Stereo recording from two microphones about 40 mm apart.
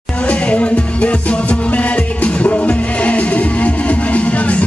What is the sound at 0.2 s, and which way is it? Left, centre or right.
Music, left.